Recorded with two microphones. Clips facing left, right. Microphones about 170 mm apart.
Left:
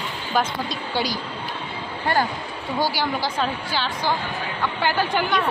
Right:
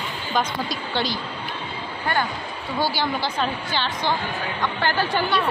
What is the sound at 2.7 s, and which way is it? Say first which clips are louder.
A woman's voice: even; 10° left (ahead or behind).